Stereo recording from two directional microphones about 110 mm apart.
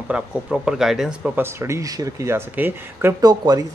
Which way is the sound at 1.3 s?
25° right (ahead or behind).